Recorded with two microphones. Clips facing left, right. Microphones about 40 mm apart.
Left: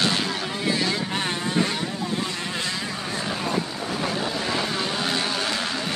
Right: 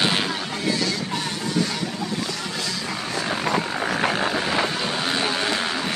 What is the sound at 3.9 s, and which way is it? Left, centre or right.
Vehicle, right.